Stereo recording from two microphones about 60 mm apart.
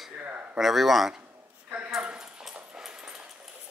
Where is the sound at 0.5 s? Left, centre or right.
Centre.